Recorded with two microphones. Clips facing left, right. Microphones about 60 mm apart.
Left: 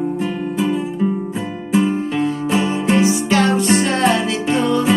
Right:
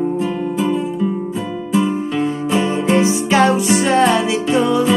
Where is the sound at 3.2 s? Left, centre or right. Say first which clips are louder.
Right 2 dB; centre.